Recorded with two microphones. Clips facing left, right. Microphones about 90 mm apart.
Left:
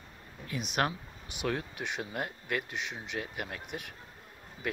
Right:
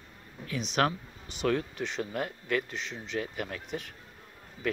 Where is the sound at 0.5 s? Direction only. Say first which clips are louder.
Right 3 dB; 5° left (ahead or behind).